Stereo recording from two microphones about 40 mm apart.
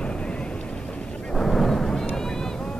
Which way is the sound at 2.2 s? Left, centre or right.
Centre.